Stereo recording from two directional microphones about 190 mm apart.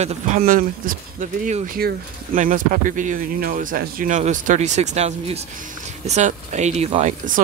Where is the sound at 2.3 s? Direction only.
45° right (ahead or behind).